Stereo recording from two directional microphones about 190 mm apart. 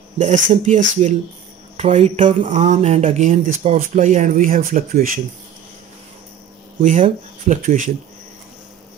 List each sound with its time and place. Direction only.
0.2 s speech: 40° right (ahead or behind)
6.8 s speech: 40° right (ahead or behind)